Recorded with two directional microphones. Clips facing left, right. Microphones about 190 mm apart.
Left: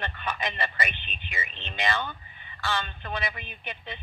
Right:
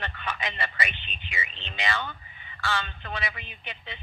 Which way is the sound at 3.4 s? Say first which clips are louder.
Left 3 dB; 50° left (ahead or behind).